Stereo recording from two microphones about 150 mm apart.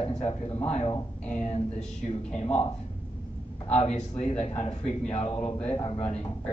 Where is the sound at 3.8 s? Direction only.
45° left (ahead or behind).